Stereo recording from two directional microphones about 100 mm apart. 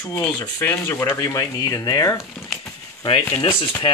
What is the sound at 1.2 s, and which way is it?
Speech, 35° left (ahead or behind).